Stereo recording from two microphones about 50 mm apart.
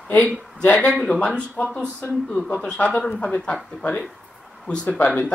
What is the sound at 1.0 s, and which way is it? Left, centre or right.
Speech, left.